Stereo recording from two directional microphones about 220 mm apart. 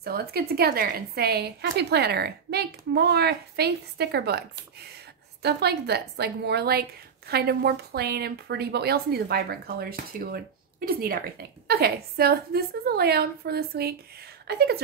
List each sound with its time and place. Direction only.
0.0 s a woman's voice: 45° right (ahead or behind)